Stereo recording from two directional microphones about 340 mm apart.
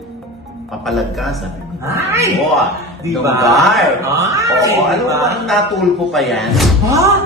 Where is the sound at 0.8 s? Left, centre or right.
Centre.